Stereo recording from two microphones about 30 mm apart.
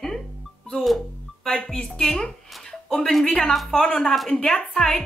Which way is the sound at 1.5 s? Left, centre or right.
Left.